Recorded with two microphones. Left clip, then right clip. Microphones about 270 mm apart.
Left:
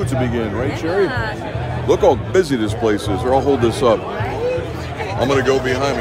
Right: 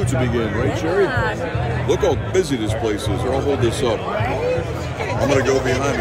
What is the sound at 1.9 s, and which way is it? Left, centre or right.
Speech, left.